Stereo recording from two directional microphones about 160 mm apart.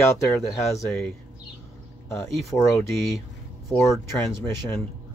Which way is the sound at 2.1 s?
15° left (ahead or behind).